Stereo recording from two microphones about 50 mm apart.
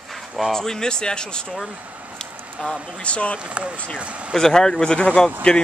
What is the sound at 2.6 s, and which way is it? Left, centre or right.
Speech, centre.